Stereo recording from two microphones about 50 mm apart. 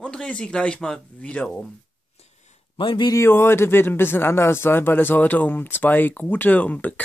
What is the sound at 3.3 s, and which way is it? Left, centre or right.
Speech, left.